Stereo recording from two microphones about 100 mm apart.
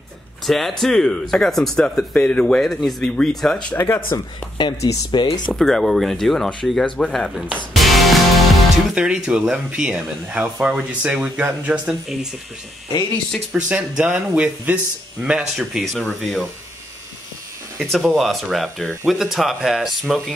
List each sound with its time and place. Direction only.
0.5 s speech: centre (ahead or behind)
3.7 s speech: 25° left (ahead or behind)
4.1 s speech: 50° left (ahead or behind)
5.5 s speech: centre (ahead or behind)
7.7 s music: centre (ahead or behind)
8.9 s speech: 10° right (ahead or behind)
13.5 s speech: 10° right (ahead or behind)
17.7 s speech: centre (ahead or behind)